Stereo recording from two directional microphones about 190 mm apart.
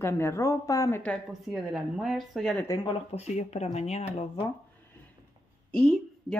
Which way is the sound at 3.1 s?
35° left (ahead or behind).